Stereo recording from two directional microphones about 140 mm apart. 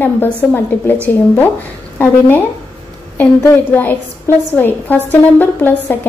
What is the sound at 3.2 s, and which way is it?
A woman's voice, 15° left (ahead or behind).